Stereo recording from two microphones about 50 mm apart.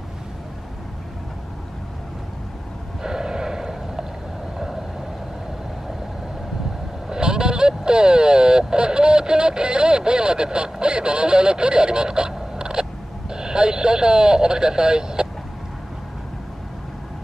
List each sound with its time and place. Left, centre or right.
3.0 s gasp: centre
7.1 s vehicle: centre
13.3 s speech: centre